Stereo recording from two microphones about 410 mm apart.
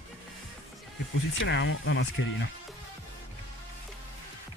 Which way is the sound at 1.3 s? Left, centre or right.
Left.